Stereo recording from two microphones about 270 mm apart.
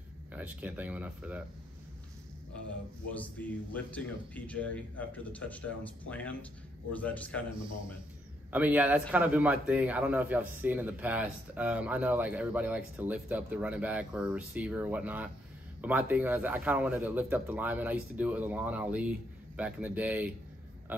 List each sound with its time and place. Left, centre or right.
0.3 s a man's voice: centre
3.1 s a man's voice: centre
7.5 s a man's voice: centre
8.5 s a man's voice: centre